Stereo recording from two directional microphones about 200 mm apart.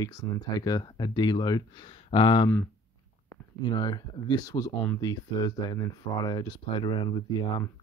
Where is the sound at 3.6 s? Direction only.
20° left (ahead or behind).